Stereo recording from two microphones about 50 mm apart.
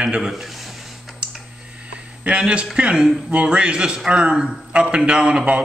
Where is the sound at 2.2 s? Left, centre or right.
Right.